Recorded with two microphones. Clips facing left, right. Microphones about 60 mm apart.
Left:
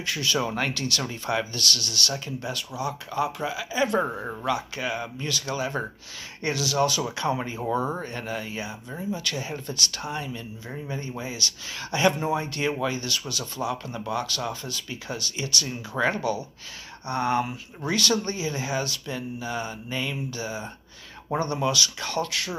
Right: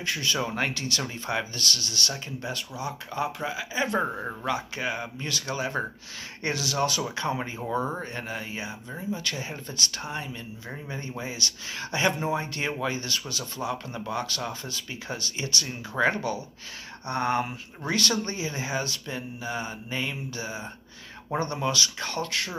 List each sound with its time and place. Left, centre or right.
0.0 s speech: right
7.7 s speech: centre